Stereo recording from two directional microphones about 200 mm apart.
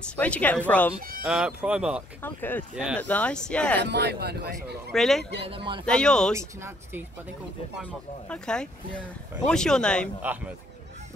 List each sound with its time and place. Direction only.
0.1 s a woman's voice: 5° left (ahead or behind)
1.2 s speech: 5° right (ahead or behind)
2.2 s a woman's voice: 10° left (ahead or behind)
2.7 s speech: 5° right (ahead or behind)
3.0 s a woman's voice: 5° left (ahead or behind)
3.8 s a man's voice: 55° right (ahead or behind)
4.9 s speech: centre (ahead or behind)
6.3 s speech: 10° right (ahead or behind)
7.8 s speech: 5° left (ahead or behind)
10.2 s speech: 10° right (ahead or behind)